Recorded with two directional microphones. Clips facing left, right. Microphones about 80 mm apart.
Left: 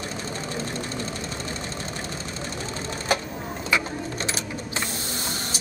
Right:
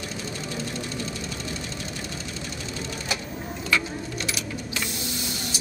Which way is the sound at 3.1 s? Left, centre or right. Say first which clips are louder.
Left 8 dB; left.